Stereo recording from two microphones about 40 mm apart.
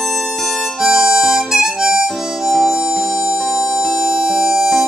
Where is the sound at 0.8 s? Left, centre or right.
Centre.